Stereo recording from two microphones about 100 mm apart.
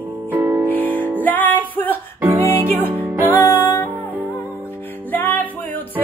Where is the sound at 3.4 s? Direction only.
25° left (ahead or behind).